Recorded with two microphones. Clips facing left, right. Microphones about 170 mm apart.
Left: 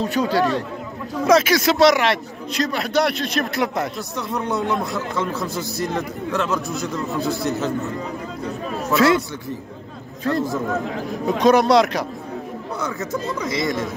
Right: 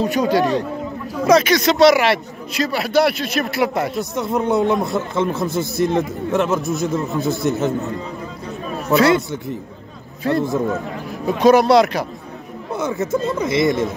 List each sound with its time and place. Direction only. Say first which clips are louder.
0.1 s a man's voice: right 3 dB; 15° right (ahead or behind)
1.2 s a man's voice: right 2 dB; centre (ahead or behind)
4.1 s a man's voice: right 8 dB; 20° right (ahead or behind)
8.9 s a man's voice: right 2 dB; centre (ahead or behind)
11.2 s a man's voice: right 3 dB; centre (ahead or behind)
12.7 s a man's voice: right 6 dB; 25° right (ahead or behind)
13.7 s a man's voice: right 5 dB; centre (ahead or behind)